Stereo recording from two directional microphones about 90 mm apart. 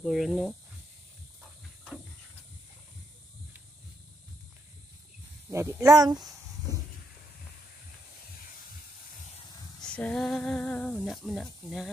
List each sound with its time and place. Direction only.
0.0 s speech: centre (ahead or behind)
5.5 s speech: 30° right (ahead or behind)
9.8 s a sound: 15° left (ahead or behind)
10.2 s music: 5° left (ahead or behind)
11.0 s speech: centre (ahead or behind)